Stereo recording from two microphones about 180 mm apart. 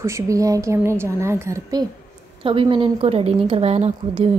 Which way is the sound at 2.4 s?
30° right (ahead or behind).